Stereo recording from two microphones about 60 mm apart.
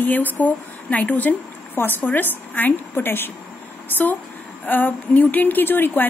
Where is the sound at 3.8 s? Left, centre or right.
Left.